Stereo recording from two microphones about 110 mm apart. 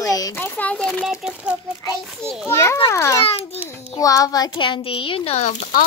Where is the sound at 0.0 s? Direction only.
30° left (ahead or behind).